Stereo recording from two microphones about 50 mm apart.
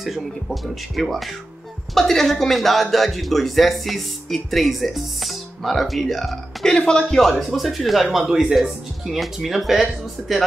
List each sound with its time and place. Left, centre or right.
0.0 s speech: centre
6.6 s speech: centre
7.2 s speech: centre